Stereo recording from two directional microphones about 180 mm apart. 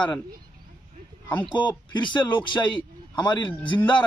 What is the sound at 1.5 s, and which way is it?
A man's voice, 25° left (ahead or behind).